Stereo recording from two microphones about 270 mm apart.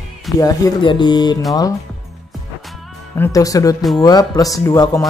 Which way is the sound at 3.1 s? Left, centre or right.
Centre.